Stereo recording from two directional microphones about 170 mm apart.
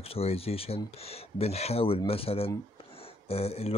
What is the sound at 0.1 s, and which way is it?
Speech, 35° left (ahead or behind).